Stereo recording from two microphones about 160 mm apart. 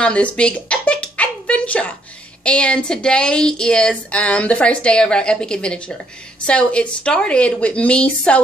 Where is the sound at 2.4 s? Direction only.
5° left (ahead or behind).